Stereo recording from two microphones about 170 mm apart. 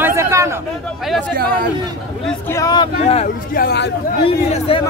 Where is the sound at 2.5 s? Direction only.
25° left (ahead or behind).